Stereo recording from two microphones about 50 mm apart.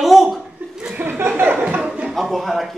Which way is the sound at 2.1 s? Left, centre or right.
Centre.